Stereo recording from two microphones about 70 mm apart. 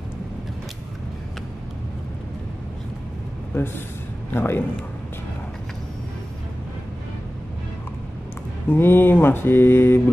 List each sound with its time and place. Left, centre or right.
3.5 s mantra: left
8.6 s mantra: left